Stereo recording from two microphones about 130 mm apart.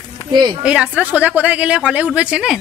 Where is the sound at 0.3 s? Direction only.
35° right (ahead or behind).